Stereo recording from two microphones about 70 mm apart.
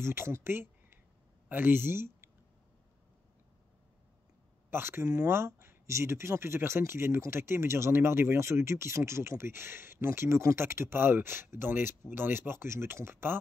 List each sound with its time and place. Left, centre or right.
0.0 s speech: right
4.6 s speech: right
5.0 s speech: right